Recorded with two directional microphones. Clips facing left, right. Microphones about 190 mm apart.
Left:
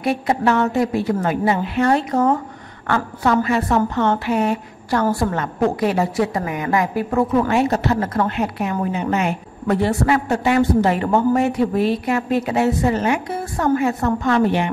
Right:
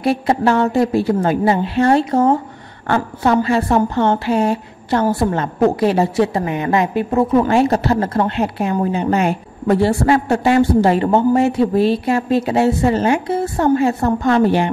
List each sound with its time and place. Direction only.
0.0 s a woman's voice: 30° right (ahead or behind)